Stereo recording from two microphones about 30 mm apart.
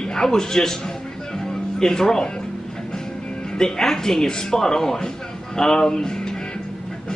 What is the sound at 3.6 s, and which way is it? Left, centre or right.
Speech, centre.